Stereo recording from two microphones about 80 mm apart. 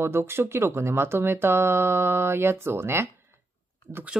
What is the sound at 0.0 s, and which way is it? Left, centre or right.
Speech, right.